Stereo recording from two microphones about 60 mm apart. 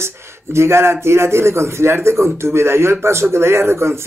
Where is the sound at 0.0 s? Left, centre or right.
Right.